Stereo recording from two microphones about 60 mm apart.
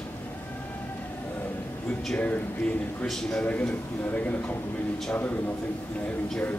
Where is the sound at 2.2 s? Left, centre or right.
Left.